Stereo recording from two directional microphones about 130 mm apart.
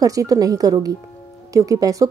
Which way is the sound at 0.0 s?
25° right (ahead or behind).